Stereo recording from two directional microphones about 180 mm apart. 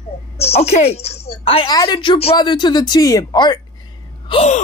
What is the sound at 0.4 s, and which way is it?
A woman's voice, 35° left (ahead or behind).